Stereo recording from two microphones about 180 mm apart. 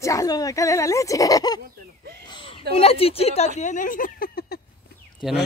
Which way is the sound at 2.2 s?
25° left (ahead or behind).